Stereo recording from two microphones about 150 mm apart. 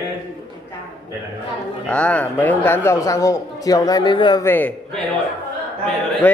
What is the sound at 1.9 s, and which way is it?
Speech, 10° left (ahead or behind).